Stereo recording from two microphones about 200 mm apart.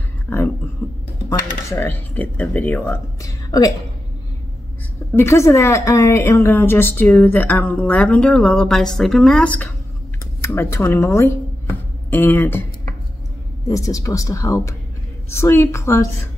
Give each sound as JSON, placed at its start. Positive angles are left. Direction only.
{"t": 0.3, "sound": "whispering", "side_deg": 10}
{"t": 0.8, "sound": "a woman's voice", "side_deg": 10}
{"t": 5.1, "sound": "a woman's voice", "side_deg": 15}
{"t": 13.7, "sound": "a woman's voice", "side_deg": 15}